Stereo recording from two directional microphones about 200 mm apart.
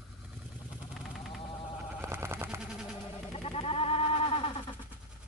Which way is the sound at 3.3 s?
30° left (ahead or behind).